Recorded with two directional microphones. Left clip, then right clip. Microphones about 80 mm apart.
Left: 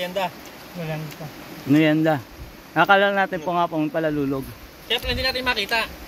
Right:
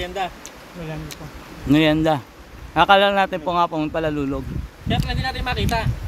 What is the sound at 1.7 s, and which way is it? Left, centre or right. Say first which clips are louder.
Speech: right 1 dB; right.